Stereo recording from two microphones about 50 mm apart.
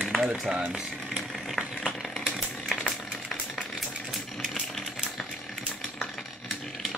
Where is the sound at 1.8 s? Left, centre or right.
Centre.